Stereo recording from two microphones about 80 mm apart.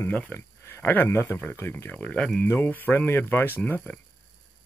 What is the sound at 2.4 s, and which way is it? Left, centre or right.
Speech, left.